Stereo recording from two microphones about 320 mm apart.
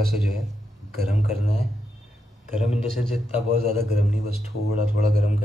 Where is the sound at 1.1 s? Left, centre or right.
Left.